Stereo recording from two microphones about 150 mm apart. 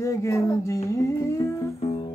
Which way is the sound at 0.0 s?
20° left (ahead or behind).